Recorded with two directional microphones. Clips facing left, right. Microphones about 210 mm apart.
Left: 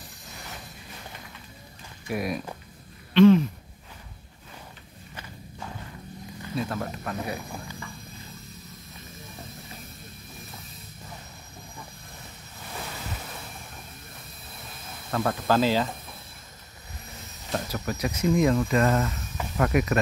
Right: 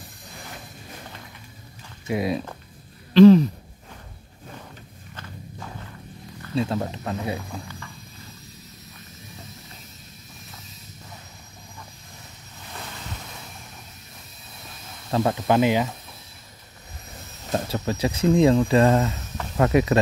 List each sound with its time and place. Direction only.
2.0 s speech: 25° right (ahead or behind)
3.1 s speech: 35° right (ahead or behind)
6.5 s speech: 25° right (ahead or behind)
15.0 s speech: 25° right (ahead or behind)
17.5 s speech: 30° right (ahead or behind)